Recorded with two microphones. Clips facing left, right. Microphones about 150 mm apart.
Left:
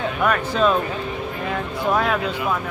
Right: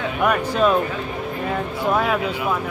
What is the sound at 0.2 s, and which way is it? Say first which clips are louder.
Speech: right 1 dB; 10° right (ahead or behind).